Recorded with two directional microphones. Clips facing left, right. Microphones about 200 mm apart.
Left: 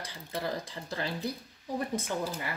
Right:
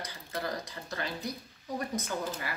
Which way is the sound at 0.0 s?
30° left (ahead or behind).